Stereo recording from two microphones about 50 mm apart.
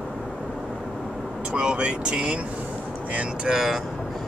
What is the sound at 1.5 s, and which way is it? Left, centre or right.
Vehicle, centre.